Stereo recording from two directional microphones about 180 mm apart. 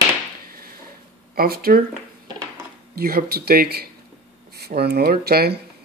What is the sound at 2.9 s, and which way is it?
Speech, 60° right (ahead or behind).